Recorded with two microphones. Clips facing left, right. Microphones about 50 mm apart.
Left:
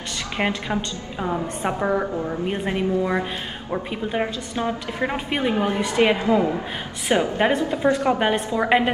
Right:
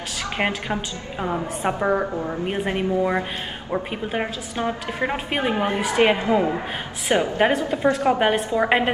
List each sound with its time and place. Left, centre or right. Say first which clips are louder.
0.4 s a woman's voice: left 1 dB; centre
5.4 s a woman's voice: left 1 dB; right
5.8 s a woman's voice: right 2 dB; centre
6.0 s a woman's voice: left 1 dB; right
7.3 s a woman's voice: right 1 dB; centre